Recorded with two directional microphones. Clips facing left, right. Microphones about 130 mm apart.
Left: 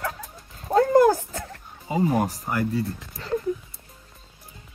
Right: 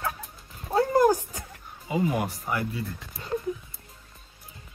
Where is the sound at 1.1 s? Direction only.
15° right (ahead or behind).